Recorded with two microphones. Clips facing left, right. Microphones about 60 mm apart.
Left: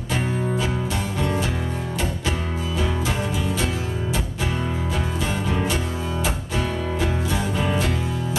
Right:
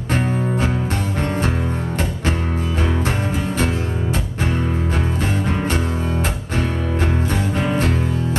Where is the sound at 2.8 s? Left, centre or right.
Right.